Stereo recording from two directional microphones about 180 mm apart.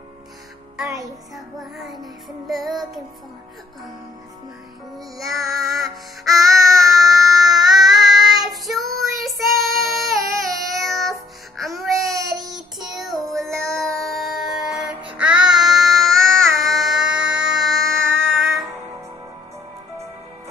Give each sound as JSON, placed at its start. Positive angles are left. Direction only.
{"t": 0.8, "sound": "music", "side_deg": -20}
{"t": 1.3, "sound": "music", "side_deg": 0}
{"t": 4.9, "sound": "music", "side_deg": 0}
{"t": 6.4, "sound": "child singing", "side_deg": 0}
{"t": 11.6, "sound": "music", "side_deg": 0}
{"t": 12.4, "sound": "child singing", "side_deg": 0}